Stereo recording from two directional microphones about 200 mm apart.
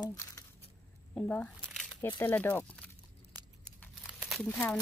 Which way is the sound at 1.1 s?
5° left (ahead or behind).